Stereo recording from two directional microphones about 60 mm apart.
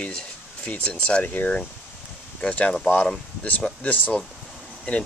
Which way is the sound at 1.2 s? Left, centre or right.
Left.